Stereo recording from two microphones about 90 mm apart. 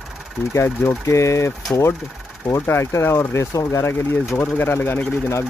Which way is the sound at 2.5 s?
30° left (ahead or behind).